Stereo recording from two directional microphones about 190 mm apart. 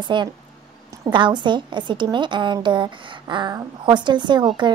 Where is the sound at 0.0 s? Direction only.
25° right (ahead or behind).